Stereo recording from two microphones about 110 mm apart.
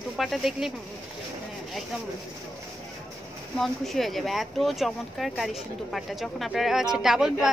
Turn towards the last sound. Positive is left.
turn(degrees=-5)  # may be behind; listen again after turning